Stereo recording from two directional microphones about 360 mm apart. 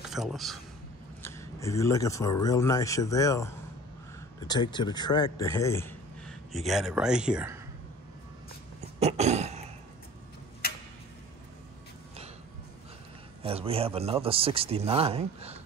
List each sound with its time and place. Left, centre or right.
0.1 s a man's voice: centre
9.0 s cough: centre
13.4 s speech: centre